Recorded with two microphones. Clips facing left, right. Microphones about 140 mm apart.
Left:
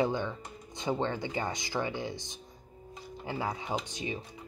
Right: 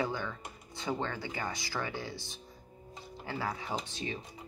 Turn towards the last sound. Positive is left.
turn(degrees=15)  # may be behind; listen again after turning